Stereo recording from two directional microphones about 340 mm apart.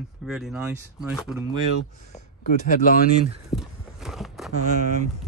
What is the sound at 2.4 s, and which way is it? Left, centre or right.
Speech, left.